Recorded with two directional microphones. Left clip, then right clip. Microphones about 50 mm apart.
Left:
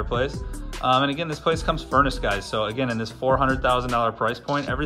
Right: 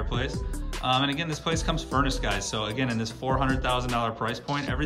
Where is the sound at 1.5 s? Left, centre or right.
Right.